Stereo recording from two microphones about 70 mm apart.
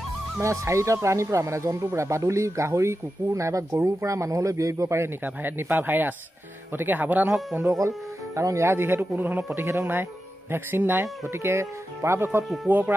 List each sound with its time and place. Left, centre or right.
0.4 s speech: right
5.2 s speech: right
8.4 s a man's voice: right
12.6 s speech: right